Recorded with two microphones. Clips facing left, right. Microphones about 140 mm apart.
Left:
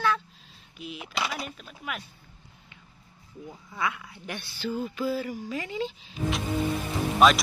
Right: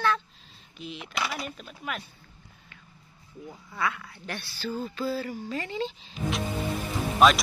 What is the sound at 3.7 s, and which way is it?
Speech, 15° left (ahead or behind).